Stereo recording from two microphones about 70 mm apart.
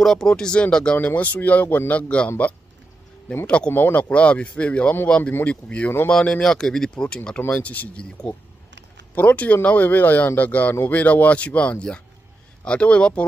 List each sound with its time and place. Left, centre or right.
0.0 s speech: centre
0.9 s speech: left
3.7 s speech: left; by 7.2 s centre
7.3 s speech: left